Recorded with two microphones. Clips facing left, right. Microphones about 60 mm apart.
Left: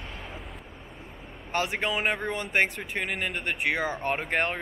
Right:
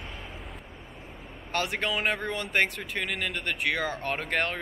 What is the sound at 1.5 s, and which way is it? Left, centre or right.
Speech, centre.